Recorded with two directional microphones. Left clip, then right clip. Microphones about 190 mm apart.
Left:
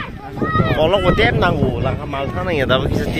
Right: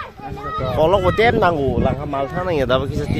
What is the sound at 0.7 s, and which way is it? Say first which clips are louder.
Speech: right 1 dB; 15° right (ahead or behind).